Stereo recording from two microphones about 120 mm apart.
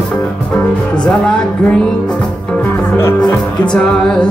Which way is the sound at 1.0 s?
5° left (ahead or behind).